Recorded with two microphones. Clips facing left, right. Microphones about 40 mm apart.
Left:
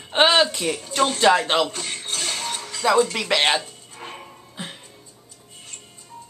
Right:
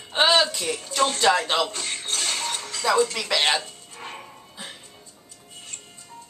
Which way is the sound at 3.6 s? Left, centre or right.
Centre.